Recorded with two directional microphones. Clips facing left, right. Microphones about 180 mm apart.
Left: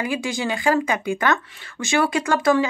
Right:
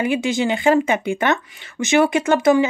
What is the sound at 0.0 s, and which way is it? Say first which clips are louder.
Speech: right 5 dB; 20° right (ahead or behind).